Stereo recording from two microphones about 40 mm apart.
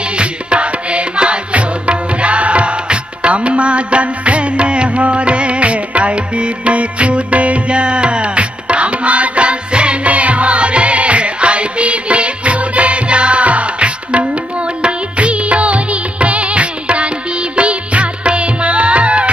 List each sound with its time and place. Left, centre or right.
0.1 s music: right